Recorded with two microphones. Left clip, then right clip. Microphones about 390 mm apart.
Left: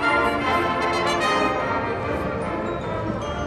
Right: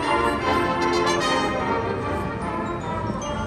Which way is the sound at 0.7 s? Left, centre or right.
Centre.